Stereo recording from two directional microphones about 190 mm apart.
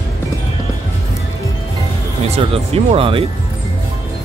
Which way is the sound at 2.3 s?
30° right (ahead or behind).